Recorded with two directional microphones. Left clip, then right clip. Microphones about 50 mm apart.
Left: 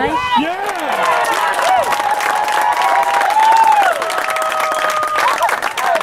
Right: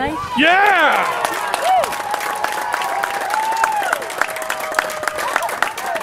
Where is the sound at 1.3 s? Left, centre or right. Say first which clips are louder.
Left 6 dB; left.